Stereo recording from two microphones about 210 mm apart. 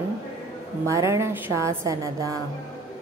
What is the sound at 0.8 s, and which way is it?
A woman's voice, 15° right (ahead or behind).